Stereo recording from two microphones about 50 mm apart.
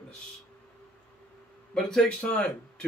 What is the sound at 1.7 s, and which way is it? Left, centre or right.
Speech, centre.